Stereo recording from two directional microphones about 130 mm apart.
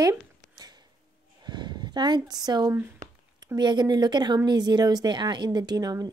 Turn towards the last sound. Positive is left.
turn(degrees=-30)  # may be behind; listen again after turning